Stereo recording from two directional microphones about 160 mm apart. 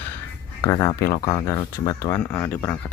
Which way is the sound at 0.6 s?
25° left (ahead or behind).